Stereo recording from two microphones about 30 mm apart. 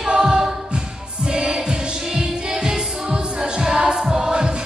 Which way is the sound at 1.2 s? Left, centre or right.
Right.